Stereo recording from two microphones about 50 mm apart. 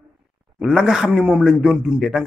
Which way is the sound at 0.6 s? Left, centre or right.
Centre.